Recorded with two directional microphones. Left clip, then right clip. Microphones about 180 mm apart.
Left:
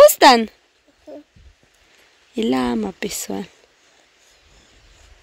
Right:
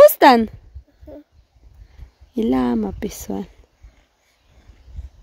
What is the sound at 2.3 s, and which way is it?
A woman's voice, 20° right (ahead or behind).